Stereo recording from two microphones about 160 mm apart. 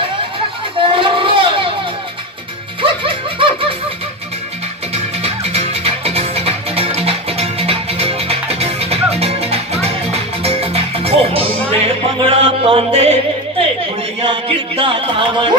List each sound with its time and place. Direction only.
0.7 s a sound: 35° right (ahead or behind)
2.8 s music: 35° right (ahead or behind)
4.9 s music: 40° right (ahead or behind)
14.2 s music: 30° right (ahead or behind)